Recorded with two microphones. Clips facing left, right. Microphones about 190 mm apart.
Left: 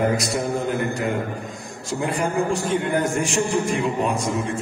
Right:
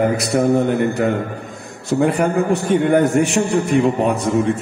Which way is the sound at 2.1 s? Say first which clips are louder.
Right 5 dB; 65° right (ahead or behind).